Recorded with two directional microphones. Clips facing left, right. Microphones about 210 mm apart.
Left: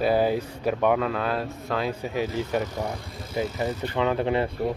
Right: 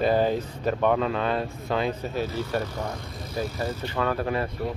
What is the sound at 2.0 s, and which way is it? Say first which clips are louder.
Speech: left 1 dB; 15° left (ahead or behind).